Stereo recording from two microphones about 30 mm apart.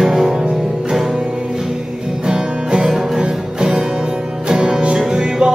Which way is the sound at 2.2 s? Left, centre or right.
Right.